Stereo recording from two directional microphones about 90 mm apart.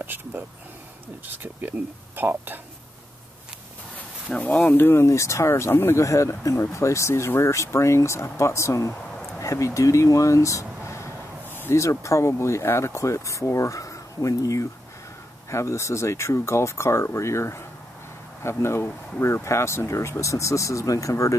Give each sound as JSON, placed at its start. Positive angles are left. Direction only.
{"t": 0.0, "sound": "speech", "side_deg": -20}
{"t": 4.3, "sound": "speech", "side_deg": 20}